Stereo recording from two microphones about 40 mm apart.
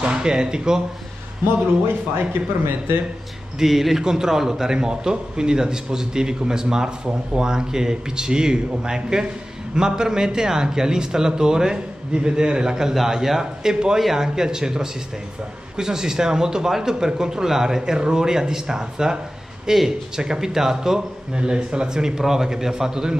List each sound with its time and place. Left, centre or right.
0.0 s a man's voice: right
2.1 s speech: right
3.5 s a man's voice: centre
21.3 s a man's voice: right